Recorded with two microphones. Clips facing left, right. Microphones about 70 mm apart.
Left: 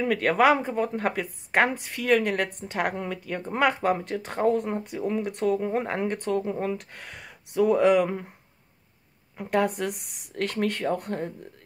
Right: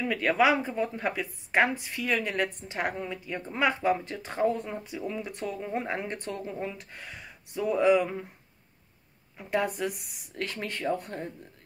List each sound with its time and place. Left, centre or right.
0.0 s speech: left
9.4 s speech: left